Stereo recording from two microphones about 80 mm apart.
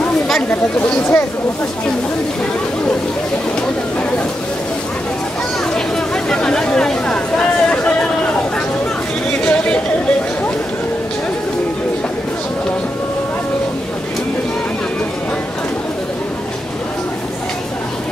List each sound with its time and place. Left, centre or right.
0.5 s speech: left
6.2 s a sound: centre
9.4 s chatter: centre